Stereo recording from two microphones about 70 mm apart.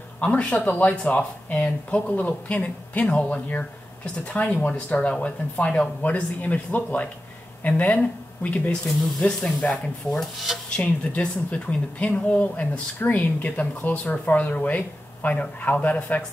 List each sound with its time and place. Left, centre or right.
0.2 s speech: centre
10.1 s speech: centre
10.8 s speech: left